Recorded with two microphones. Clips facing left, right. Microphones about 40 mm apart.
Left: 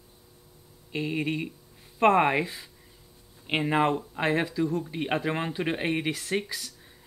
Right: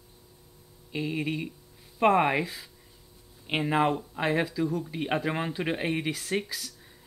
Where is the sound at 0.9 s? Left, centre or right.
Centre.